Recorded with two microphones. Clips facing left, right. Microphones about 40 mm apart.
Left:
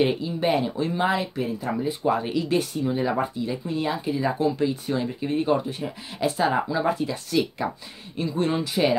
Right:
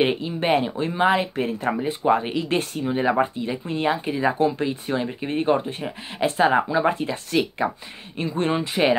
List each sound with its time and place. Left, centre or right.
0.0 s speech: right
1.3 s speech: right
1.8 s speech: right